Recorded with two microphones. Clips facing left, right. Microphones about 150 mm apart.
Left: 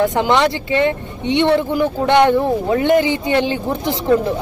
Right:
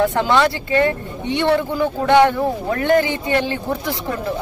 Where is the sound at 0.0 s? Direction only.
15° left (ahead or behind).